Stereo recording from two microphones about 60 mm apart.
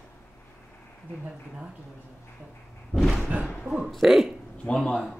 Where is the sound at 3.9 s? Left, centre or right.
Centre.